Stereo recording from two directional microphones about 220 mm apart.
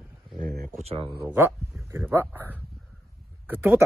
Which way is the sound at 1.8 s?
10° right (ahead or behind).